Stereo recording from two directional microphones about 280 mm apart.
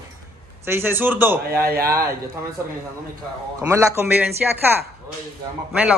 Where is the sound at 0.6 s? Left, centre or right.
Centre.